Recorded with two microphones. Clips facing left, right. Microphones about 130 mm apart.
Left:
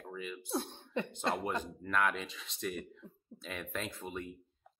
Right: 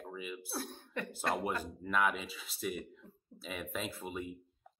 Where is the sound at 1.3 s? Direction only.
10° right (ahead or behind).